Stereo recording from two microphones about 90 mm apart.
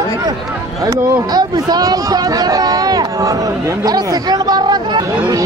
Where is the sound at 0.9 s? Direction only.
50° right (ahead or behind).